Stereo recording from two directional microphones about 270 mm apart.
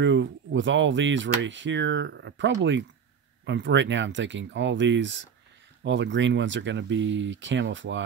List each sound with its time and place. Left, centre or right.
0.0 s speech: right